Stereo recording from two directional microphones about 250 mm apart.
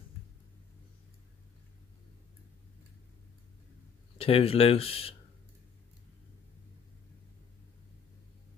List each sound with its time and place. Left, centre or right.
4.2 s speech: left